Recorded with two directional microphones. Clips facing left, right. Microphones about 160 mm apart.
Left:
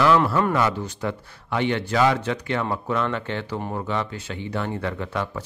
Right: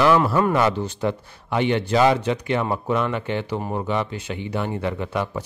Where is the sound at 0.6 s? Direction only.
25° right (ahead or behind).